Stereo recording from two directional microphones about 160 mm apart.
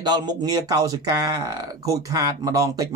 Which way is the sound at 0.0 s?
25° right (ahead or behind).